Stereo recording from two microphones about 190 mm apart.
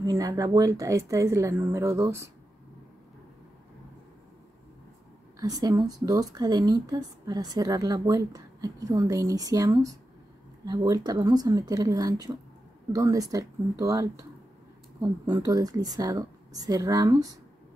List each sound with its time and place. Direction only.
0.0 s speech: 20° right (ahead or behind)
5.4 s speech: 20° right (ahead or behind)